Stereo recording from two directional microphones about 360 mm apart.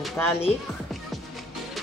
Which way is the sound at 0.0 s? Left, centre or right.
Centre.